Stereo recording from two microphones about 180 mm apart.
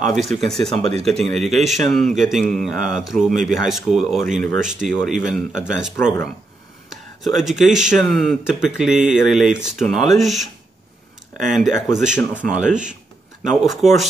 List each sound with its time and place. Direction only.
0.0 s speech: centre (ahead or behind)